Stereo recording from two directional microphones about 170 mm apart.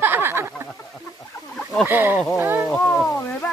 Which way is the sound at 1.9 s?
10° right (ahead or behind).